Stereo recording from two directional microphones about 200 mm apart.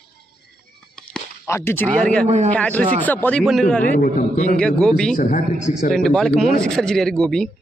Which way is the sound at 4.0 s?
40° left (ahead or behind).